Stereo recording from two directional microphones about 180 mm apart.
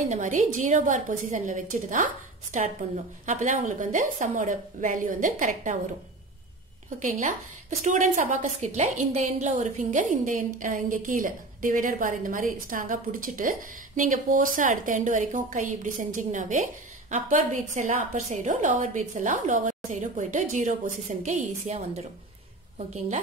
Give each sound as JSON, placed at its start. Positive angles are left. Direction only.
{"t": 0.1, "sound": "a woman's voice", "side_deg": -45}
{"t": 7.0, "sound": "a woman's voice", "side_deg": -45}